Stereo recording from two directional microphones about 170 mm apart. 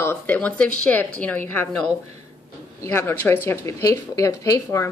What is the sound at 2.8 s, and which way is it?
Speech, 15° left (ahead or behind).